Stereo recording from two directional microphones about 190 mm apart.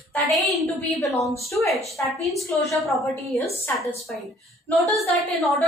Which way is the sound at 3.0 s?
15° left (ahead or behind).